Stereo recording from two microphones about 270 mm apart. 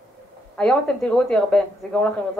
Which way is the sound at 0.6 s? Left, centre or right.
Centre.